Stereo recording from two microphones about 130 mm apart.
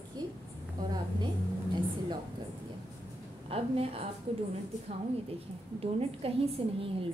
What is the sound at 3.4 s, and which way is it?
Speech, 50° right (ahead or behind).